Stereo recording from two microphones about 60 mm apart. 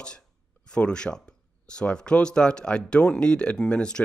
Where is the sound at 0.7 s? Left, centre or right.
Centre.